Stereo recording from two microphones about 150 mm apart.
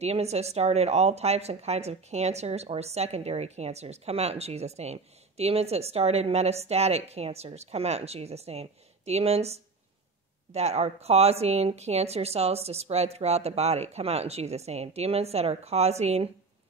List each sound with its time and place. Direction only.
0.0 s speech: 45° right (ahead or behind)